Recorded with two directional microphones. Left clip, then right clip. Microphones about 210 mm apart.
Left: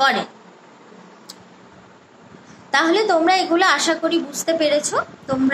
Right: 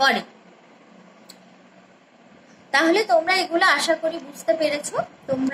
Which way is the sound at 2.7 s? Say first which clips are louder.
Left 1 dB; 15° left (ahead or behind).